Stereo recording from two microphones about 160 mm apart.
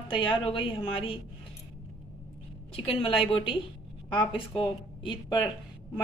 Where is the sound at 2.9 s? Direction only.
35° left (ahead or behind).